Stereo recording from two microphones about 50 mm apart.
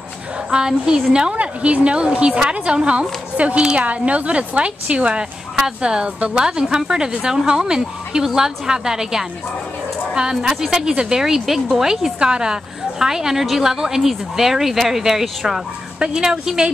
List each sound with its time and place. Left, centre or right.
0.5 s a woman's voice: centre